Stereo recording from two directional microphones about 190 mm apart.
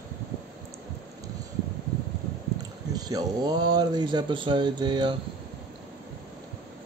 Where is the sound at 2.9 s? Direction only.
20° right (ahead or behind).